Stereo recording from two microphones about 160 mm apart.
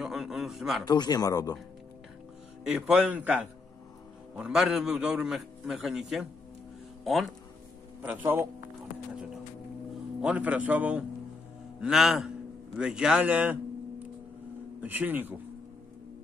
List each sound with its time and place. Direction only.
0.0 s a sound: centre (ahead or behind)
0.8 s speech: 25° left (ahead or behind)
2.6 s a man's voice: 5° right (ahead or behind)
8.0 s a man's voice: 10° right (ahead or behind)
9.1 s music: 5° right (ahead or behind)
10.2 s a man's voice: 10° right (ahead or behind)
14.8 s a man's voice: 10° right (ahead or behind)